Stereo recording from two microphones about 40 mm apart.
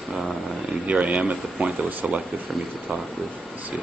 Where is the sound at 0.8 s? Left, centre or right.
Right.